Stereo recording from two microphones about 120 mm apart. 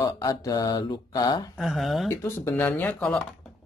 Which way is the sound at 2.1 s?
25° left (ahead or behind).